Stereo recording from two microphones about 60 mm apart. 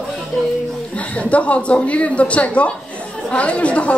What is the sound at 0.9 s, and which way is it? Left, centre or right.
A woman's voice, left.